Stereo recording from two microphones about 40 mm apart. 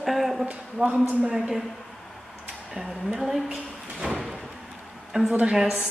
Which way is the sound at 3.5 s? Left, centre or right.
Centre.